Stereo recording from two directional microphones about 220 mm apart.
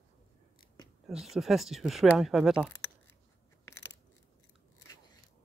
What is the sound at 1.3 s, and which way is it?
Speech, centre (ahead or behind).